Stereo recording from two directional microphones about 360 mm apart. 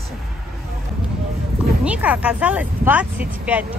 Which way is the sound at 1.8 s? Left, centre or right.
Centre.